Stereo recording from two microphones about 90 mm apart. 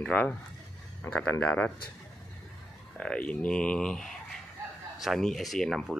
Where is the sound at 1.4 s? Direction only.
15° left (ahead or behind).